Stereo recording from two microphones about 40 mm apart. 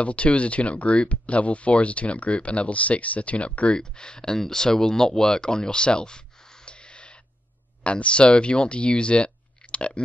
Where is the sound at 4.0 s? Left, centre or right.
Centre.